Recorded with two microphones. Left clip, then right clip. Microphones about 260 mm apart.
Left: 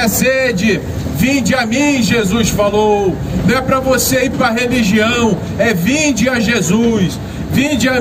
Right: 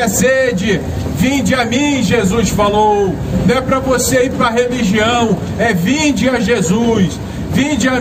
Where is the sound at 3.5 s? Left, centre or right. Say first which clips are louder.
Left 1 dB; left.